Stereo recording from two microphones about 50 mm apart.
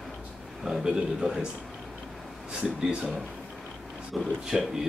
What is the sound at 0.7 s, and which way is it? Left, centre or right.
Speech, centre.